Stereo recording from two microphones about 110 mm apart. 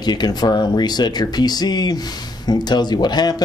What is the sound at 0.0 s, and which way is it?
Speech, 40° left (ahead or behind).